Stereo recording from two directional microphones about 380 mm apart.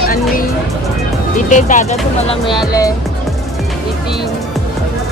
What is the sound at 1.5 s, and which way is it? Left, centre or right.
Speech, centre.